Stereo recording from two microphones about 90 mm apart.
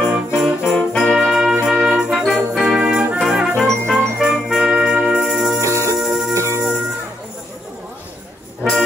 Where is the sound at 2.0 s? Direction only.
5° right (ahead or behind).